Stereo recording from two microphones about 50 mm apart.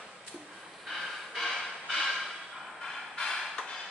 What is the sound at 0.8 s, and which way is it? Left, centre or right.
Snort, centre.